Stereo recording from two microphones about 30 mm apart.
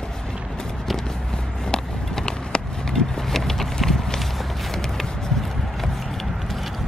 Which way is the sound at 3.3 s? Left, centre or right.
Centre.